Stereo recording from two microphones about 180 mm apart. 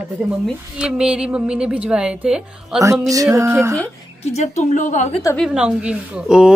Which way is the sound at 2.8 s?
20° right (ahead or behind).